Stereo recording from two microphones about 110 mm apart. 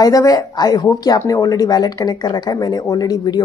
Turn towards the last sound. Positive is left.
turn(degrees=35)  # may be behind; listen again after turning